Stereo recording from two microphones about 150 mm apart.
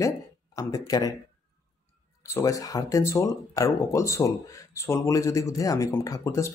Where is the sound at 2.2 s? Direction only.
20° left (ahead or behind).